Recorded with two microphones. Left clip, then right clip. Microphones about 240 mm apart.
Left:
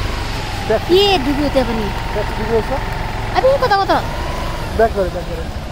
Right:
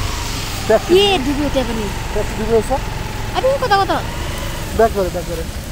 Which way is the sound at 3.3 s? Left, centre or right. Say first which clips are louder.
Left 2 dB; centre.